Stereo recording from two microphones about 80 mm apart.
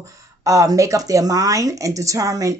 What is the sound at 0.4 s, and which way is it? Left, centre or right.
A woman's voice, right.